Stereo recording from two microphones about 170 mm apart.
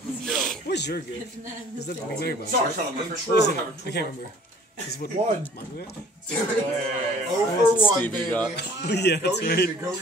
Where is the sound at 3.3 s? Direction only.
75° left (ahead or behind).